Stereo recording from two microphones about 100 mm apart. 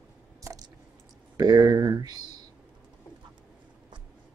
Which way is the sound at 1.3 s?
40° right (ahead or behind).